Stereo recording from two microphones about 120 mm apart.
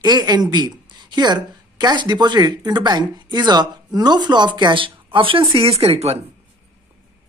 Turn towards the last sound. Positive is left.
turn(degrees=-55)  # may be behind; listen again after turning